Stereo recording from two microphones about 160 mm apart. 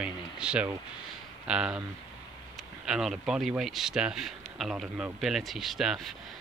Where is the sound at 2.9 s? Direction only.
5° right (ahead or behind).